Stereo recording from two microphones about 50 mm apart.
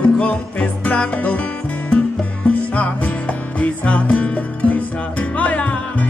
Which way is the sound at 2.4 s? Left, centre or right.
Left.